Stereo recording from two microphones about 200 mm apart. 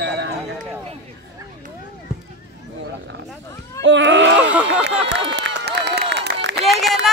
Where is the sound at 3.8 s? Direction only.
65° right (ahead or behind).